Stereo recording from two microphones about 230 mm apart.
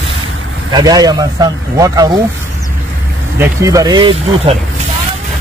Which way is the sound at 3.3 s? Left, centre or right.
Centre.